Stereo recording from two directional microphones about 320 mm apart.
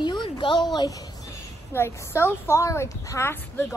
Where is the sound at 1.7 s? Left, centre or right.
Centre.